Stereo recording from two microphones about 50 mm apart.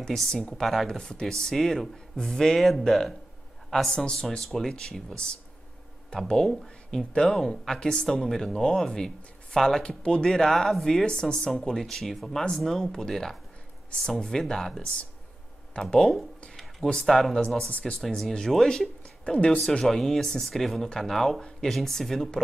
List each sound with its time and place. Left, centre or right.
0.1 s speech: centre
0.8 s speech: centre
7.1 s speech: centre
11.5 s speech: centre
17.6 s speech: left
18.0 s speech: centre
19.9 s speech: centre
21.4 s speech: centre